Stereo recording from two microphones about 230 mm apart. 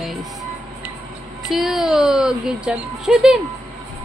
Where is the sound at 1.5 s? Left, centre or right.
Centre.